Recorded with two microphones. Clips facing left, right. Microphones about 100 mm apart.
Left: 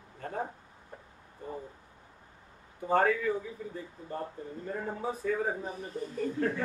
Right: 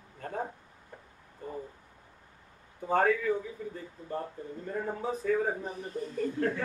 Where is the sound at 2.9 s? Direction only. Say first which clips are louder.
Even; 5° right (ahead or behind).